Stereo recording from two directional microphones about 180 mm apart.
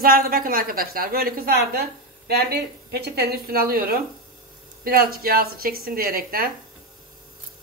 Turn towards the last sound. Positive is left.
turn(degrees=-55)  # may be behind; listen again after turning